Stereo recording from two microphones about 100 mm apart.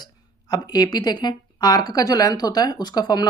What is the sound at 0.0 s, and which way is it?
Speech, 40° left (ahead or behind).